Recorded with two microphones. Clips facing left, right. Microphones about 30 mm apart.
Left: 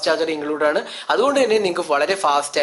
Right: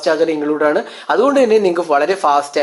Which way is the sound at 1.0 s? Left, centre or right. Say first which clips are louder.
Right 5 dB; left.